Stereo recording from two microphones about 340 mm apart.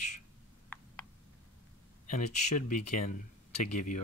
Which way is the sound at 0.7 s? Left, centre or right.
Centre.